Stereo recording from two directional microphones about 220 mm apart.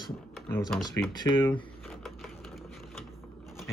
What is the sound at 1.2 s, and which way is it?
Speech, 20° left (ahead or behind).